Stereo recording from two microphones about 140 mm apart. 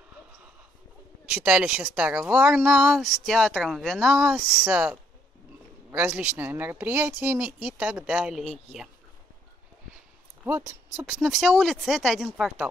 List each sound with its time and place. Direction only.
1.2 s speech: 10° right (ahead or behind)
5.9 s a sound: 20° right (ahead or behind)
6.1 s speech: 10° right (ahead or behind)
10.6 s speech: 15° right (ahead or behind)